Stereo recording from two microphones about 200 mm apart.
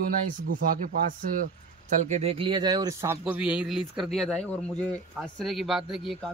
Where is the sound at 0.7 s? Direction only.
45° right (ahead or behind).